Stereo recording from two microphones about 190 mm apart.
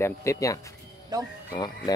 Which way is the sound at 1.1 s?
20° right (ahead or behind).